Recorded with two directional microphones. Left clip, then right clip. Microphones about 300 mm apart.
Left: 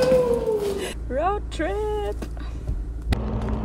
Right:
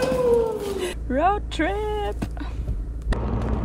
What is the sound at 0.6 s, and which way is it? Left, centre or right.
Speech, centre.